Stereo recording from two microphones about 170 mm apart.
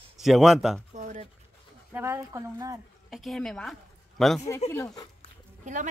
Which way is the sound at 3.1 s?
Centre (ahead or behind).